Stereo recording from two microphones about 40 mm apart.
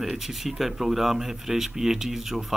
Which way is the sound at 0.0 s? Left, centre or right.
Centre.